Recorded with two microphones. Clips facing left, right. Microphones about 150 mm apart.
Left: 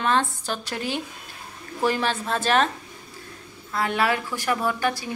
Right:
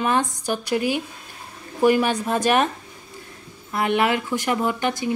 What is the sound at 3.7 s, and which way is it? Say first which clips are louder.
A woman's voice: right 3 dB; 20° right (ahead or behind).